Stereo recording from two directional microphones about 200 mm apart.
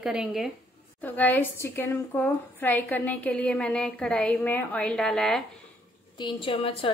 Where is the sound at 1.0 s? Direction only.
10° left (ahead or behind).